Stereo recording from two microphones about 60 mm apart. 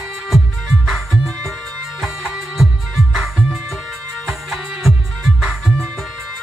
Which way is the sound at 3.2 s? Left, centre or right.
Centre.